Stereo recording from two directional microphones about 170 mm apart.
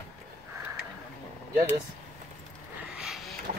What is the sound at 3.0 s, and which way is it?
Vehicle, 5° right (ahead or behind).